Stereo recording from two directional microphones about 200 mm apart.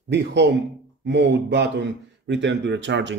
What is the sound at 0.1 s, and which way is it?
Speech, 60° right (ahead or behind).